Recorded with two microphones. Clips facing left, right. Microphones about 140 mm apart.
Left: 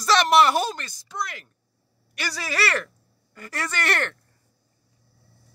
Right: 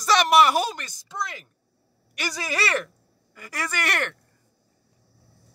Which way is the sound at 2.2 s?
15° right (ahead or behind).